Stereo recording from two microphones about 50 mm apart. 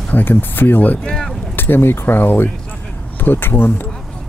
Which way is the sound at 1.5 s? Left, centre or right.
Left.